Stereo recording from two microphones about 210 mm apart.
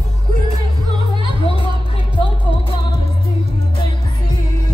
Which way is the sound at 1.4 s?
25° left (ahead or behind).